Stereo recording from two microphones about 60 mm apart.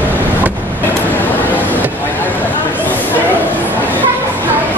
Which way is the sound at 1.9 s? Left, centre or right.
Left.